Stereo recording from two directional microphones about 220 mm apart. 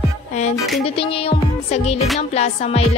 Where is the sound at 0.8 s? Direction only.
25° left (ahead or behind).